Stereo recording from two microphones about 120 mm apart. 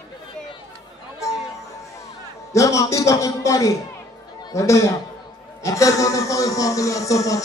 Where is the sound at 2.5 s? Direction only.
25° left (ahead or behind).